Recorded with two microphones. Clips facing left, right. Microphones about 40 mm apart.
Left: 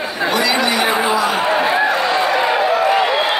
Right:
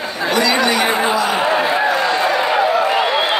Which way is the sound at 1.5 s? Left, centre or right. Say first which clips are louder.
Even; centre.